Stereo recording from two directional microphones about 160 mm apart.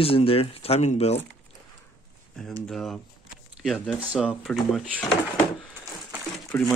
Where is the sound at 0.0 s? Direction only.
35° left (ahead or behind).